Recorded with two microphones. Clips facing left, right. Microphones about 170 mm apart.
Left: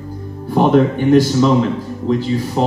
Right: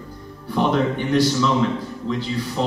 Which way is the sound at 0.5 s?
45° left (ahead or behind).